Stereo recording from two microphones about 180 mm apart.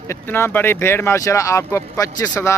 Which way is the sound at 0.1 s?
15° left (ahead or behind).